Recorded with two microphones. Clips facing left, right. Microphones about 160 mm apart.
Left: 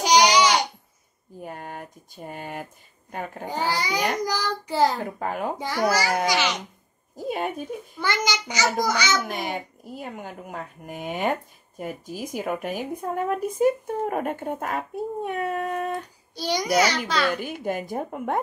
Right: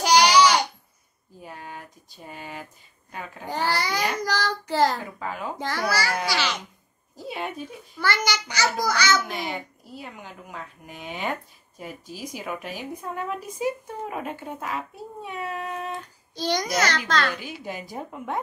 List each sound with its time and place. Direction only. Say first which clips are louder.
0.0 s babbling: right 1 dB; 15° left (ahead or behind)
1.4 s speech: left 4 dB; 50° left (ahead or behind)
3.4 s child singing: right 1 dB; 15° left (ahead or behind)
5.0 s a woman's voice: left 4 dB; 55° left (ahead or behind)
5.6 s child singing: left 2 dB; 15° left (ahead or behind)
7.2 s a woman's voice: left 5 dB; 45° left (ahead or behind)
8.0 s child singing: right 1 dB; 20° left (ahead or behind)
8.8 s a child's voice: right 1 dB; 20° left (ahead or behind)
9.3 s a woman's voice: left 2 dB; 45° left (ahead or behind)
16.3 s child singing: left 3 dB; 10° left (ahead or behind)
17.4 s a woman's voice: left 6 dB; 50° left (ahead or behind)